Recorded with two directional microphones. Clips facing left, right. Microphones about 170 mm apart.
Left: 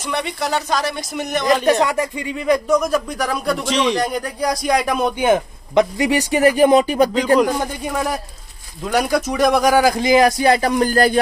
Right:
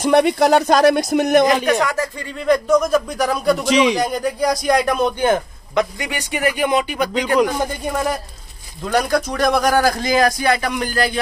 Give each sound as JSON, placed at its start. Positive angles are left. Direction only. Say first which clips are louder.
{"t": 0.0, "sound": "speech", "louder": "right 10 dB", "side_deg": -50}
{"t": 1.8, "sound": "speech", "louder": "left 2 dB", "side_deg": 20}
{"t": 5.8, "sound": "speech", "louder": "left 5 dB", "side_deg": 25}
{"t": 6.1, "sound": "speech", "louder": "left 6 dB", "side_deg": 35}
{"t": 7.8, "sound": "a man's voice", "louder": "right 1 dB", "side_deg": 0}